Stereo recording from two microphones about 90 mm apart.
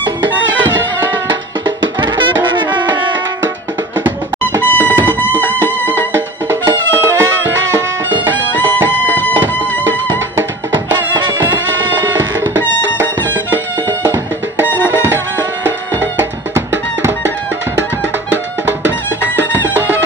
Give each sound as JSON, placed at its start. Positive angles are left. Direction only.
{"t": 0.7, "sound": "music", "side_deg": -60}
{"t": 4.6, "sound": "music", "side_deg": 20}
{"t": 6.1, "sound": "music", "side_deg": -30}
{"t": 8.5, "sound": "music", "side_deg": 20}
{"t": 10.7, "sound": "music", "side_deg": -55}
{"t": 14.9, "sound": "music", "side_deg": -25}
{"t": 19.5, "sound": "music", "side_deg": -25}